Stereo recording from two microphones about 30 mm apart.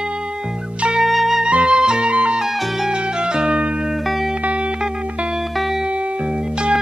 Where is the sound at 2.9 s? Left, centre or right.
Right.